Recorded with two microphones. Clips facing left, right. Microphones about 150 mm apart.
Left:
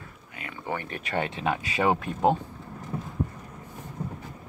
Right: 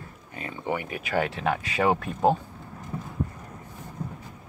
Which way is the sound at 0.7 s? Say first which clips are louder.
Right 3 dB; 10° right (ahead or behind).